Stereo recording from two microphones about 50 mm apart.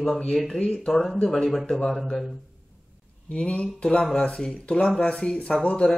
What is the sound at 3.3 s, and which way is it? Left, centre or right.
Speech, left.